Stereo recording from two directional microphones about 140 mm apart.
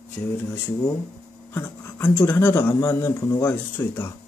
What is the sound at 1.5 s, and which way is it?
Speech, 15° left (ahead or behind).